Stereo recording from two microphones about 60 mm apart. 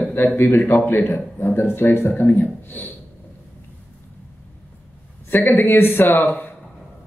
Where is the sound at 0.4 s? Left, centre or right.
Left.